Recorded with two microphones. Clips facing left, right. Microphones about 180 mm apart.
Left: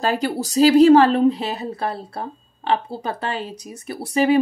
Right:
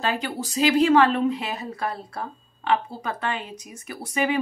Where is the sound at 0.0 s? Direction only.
40° left (ahead or behind).